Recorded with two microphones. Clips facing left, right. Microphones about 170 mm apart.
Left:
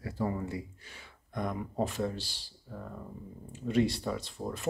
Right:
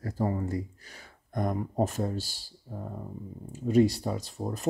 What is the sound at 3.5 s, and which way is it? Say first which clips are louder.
Speech: right 5 dB; 40° right (ahead or behind).